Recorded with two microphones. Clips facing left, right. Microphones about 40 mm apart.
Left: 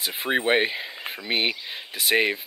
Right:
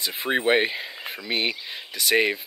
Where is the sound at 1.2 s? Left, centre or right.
Centre.